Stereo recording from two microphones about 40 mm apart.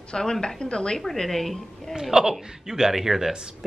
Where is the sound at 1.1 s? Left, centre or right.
Centre.